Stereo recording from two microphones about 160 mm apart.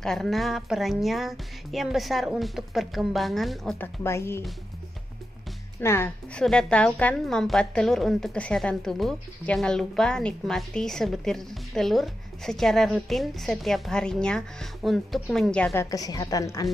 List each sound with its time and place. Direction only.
0.0 s a woman's voice: centre (ahead or behind)
3.7 s a woman's voice: 15° left (ahead or behind)
5.8 s a woman's voice: 15° left (ahead or behind)